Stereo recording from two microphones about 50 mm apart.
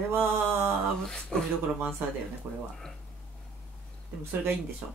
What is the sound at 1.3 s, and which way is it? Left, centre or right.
Speech, centre.